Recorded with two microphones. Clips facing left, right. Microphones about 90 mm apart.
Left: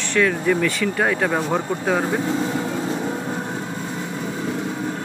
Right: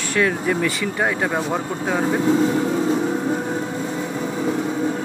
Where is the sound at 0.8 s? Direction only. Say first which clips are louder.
Left 1 dB; 10° right (ahead or behind).